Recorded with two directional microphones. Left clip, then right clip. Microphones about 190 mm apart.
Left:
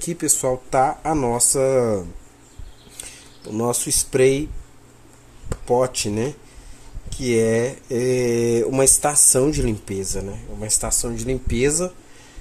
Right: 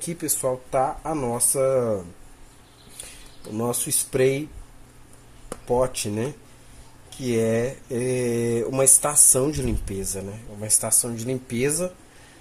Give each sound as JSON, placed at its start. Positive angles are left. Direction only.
{"t": 0.0, "sound": "speech", "side_deg": 15}
{"t": 3.5, "sound": "speech", "side_deg": 10}
{"t": 5.5, "sound": "speech", "side_deg": 10}